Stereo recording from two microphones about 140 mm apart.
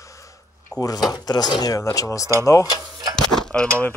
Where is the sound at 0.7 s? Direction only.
25° left (ahead or behind).